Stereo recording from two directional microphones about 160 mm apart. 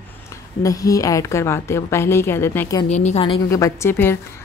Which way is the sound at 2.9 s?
45° left (ahead or behind).